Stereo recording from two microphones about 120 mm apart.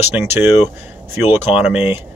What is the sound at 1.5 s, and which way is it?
Speech, 10° right (ahead or behind).